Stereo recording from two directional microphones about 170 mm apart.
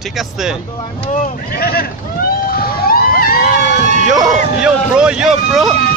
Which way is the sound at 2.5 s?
60° left (ahead or behind).